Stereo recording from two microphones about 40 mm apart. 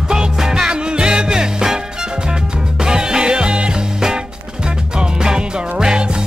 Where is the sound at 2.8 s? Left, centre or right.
Centre.